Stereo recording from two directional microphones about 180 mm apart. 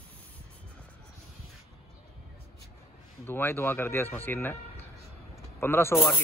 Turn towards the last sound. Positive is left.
turn(degrees=15)  # may be behind; listen again after turning